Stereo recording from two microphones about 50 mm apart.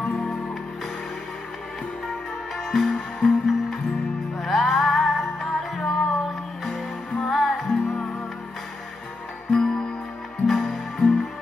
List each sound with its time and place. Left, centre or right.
2.0 s music: centre
9.5 s music: centre
10.4 s music: centre